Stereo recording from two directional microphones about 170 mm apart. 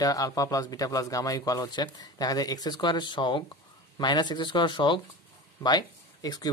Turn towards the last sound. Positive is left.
turn(degrees=25)  # may be behind; listen again after turning